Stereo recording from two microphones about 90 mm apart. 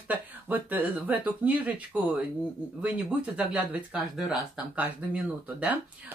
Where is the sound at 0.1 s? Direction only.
20° right (ahead or behind).